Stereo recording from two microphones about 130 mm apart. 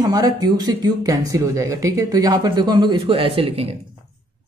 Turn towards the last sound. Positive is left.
turn(degrees=-45)  # may be behind; listen again after turning